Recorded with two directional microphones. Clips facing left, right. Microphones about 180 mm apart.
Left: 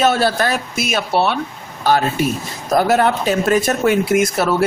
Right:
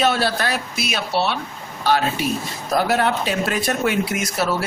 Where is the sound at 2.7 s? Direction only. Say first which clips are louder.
Left 5 dB; 45° left (ahead or behind).